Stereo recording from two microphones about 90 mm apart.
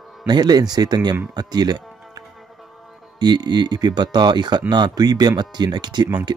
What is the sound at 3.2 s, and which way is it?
Speech, 50° right (ahead or behind).